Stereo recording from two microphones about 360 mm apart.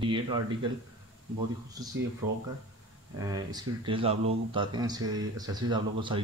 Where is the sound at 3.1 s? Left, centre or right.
Centre.